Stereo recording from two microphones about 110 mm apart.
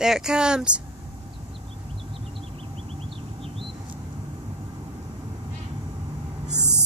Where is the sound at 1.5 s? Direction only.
55° right (ahead or behind).